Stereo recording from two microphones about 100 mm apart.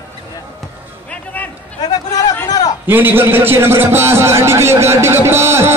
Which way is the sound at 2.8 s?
20° right (ahead or behind).